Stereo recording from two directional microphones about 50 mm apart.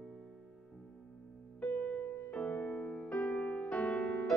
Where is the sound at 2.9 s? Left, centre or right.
Centre.